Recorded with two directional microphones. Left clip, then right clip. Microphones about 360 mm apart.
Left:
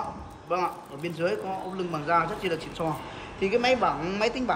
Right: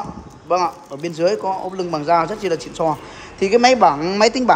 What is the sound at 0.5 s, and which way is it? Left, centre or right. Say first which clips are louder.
A man's voice: right 10 dB; centre.